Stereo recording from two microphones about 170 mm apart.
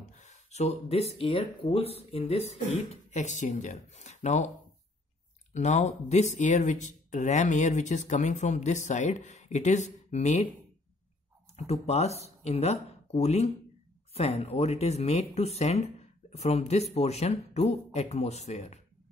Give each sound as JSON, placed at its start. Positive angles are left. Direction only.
{"t": 0.1, "sound": "speech", "side_deg": 45}
{"t": 5.5, "sound": "speech", "side_deg": 45}
{"t": 11.5, "sound": "speech", "side_deg": 35}